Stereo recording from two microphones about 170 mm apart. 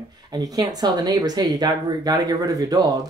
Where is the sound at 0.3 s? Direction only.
20° right (ahead or behind).